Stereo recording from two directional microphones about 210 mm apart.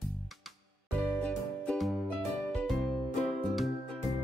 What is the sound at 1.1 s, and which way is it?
Music, 5° left (ahead or behind).